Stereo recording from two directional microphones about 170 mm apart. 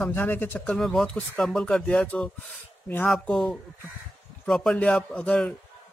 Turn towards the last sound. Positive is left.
turn(degrees=5)  # may be behind; listen again after turning